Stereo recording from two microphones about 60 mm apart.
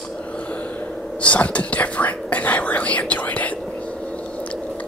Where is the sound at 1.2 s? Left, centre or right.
Left.